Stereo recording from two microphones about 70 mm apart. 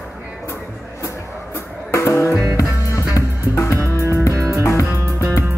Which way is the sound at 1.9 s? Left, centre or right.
Left.